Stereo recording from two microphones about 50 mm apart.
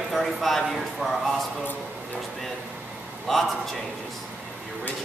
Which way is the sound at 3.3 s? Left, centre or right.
Centre.